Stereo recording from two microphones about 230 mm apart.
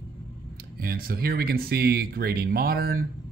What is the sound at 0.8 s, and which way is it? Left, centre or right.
Speech, right.